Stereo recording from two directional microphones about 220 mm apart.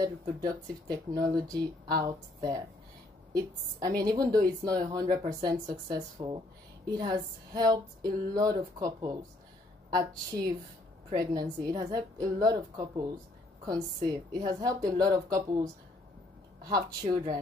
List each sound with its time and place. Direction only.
0.0 s speech: 15° right (ahead or behind)